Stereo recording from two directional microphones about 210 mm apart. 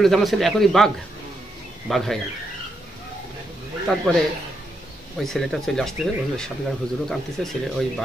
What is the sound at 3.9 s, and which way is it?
Speech, centre (ahead or behind).